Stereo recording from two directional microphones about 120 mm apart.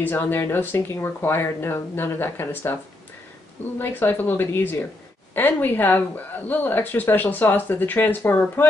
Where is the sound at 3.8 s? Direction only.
20° left (ahead or behind).